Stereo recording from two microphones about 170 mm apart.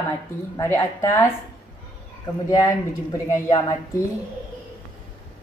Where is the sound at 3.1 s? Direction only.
20° left (ahead or behind).